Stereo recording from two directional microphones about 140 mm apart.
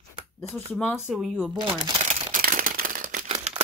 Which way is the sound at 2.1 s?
75° right (ahead or behind).